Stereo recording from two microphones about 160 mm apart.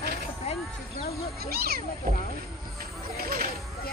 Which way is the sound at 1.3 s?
75° right (ahead or behind).